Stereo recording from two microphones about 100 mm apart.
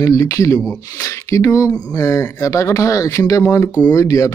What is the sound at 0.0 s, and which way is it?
Speech, 35° left (ahead or behind).